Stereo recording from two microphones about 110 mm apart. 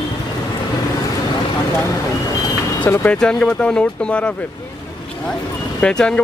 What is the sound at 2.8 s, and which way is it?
Speech, 15° left (ahead or behind).